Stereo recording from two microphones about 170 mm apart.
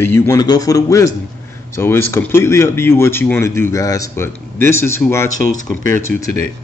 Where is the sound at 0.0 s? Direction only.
15° left (ahead or behind).